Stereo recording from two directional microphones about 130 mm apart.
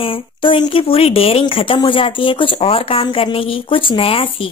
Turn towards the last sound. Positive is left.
turn(degrees=45)  # may be behind; listen again after turning